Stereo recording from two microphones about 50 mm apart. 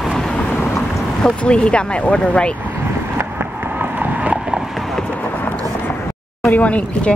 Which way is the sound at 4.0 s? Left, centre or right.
Right.